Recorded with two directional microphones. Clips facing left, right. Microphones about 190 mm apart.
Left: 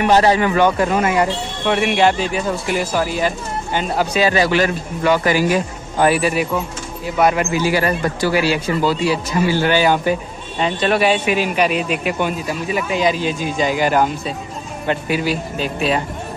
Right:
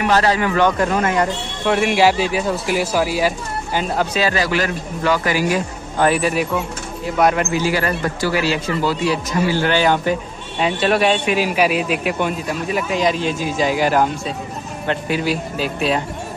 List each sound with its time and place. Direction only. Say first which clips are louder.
0.0 s speech: left 3 dB; 20° left (ahead or behind); by 4.0 s 5° right (ahead or behind)
4.0 s a man's voice: left 5 dB; 15° left (ahead or behind)
5.9 s speech: left 1 dB; 5° left (ahead or behind)
7.7 s speech: left 2 dB; 15° left (ahead or behind); by 16.0 s centre (ahead or behind)